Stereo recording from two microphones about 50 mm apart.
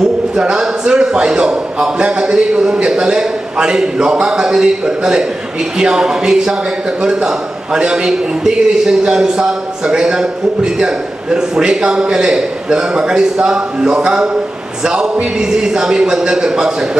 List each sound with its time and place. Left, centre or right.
0.4 s a man's voice: centre